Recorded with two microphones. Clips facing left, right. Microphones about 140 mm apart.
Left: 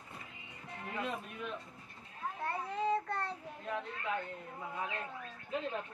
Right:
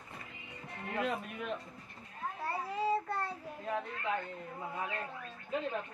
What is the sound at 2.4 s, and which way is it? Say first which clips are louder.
Child singing: right 1 dB; 5° right (ahead or behind).